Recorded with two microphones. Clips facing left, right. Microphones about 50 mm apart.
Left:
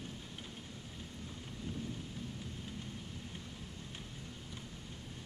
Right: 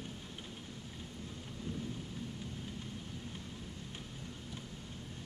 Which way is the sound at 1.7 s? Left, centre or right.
Centre.